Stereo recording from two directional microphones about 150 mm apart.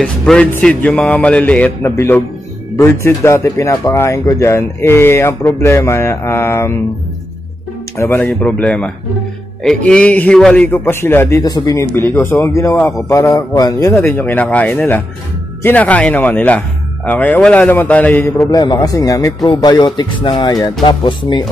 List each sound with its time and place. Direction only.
0.0 s speech: 5° left (ahead or behind)
8.0 s speech: 15° left (ahead or behind); by 21.5 s 30° left (ahead or behind)